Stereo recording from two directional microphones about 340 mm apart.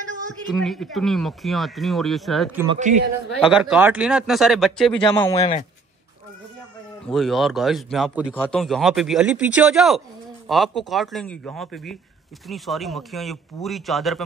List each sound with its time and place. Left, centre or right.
0.6 s a man's voice: centre
2.7 s a man's voice: right
3.3 s a man's voice: centre
5.0 s a man's voice: centre
7.1 s a man's voice: centre